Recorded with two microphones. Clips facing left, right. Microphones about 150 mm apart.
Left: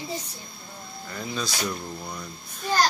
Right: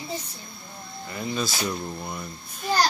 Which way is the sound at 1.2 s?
5° right (ahead or behind).